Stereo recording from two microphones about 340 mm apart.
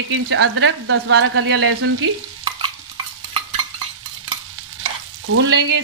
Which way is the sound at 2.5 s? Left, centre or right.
Centre.